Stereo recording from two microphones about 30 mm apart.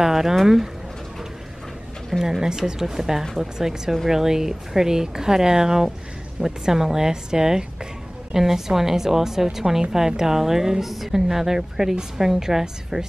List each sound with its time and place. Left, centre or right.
0.0 s speech: centre
2.2 s speech: centre